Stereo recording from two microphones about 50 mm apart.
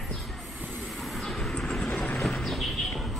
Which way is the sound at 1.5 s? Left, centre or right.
Centre.